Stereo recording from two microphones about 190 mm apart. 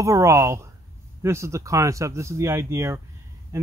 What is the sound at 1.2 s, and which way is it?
Speech, 15° right (ahead or behind).